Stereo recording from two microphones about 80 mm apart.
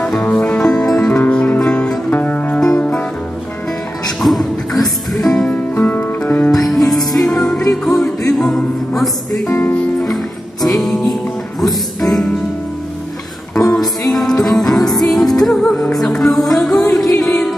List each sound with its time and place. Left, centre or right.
0.0 s music: centre
1.2 s music: centre
4.2 s music: centre
5.8 s music: left
6.6 s music: centre
8.0 s music: left
8.4 s music: centre
9.5 s music: left
10.0 s music: centre
13.6 s music: centre